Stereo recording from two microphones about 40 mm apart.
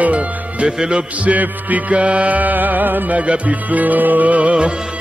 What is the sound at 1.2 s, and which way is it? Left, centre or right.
Music, right.